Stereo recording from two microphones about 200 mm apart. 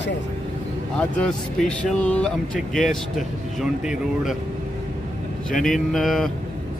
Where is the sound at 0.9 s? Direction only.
5° left (ahead or behind).